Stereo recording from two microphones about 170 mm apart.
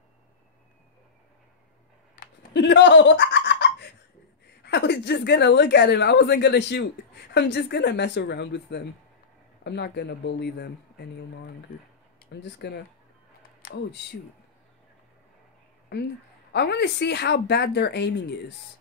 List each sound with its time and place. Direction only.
2.1 s a sound: 90° left
4.6 s a woman's voice: 80° left
12.3 s a woman's voice: 90° left
15.9 s a woman's voice: 75° left (ahead or behind)